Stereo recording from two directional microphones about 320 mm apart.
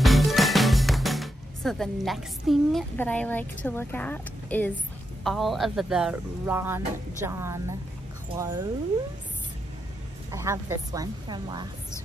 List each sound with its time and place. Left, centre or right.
0.0 s a woman's voice: centre
10.3 s a woman's voice: centre